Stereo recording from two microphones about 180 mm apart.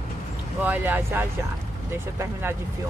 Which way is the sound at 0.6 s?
10° right (ahead or behind).